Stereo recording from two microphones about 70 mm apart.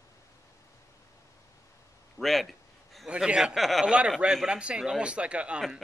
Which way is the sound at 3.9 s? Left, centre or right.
Centre.